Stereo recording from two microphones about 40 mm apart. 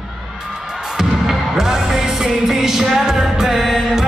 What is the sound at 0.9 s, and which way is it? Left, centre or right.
Music, centre.